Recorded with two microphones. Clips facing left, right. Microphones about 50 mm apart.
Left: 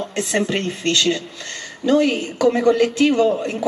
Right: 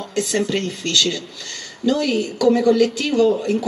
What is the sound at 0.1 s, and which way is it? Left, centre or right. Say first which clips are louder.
Speech: right 2 dB; left.